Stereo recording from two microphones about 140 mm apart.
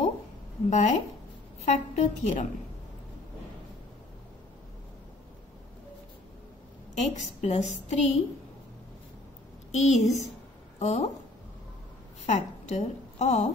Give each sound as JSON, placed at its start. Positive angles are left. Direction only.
{"t": 0.7, "sound": "a woman's voice", "side_deg": 55}
{"t": 7.0, "sound": "a woman's voice", "side_deg": 55}
{"t": 9.7, "sound": "a woman's voice", "side_deg": 55}
{"t": 12.3, "sound": "a woman's voice", "side_deg": 55}